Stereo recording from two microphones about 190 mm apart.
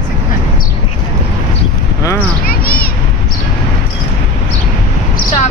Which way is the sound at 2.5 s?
50° left (ahead or behind).